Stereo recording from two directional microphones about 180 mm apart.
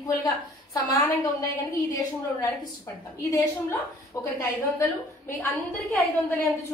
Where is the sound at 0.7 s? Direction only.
20° left (ahead or behind).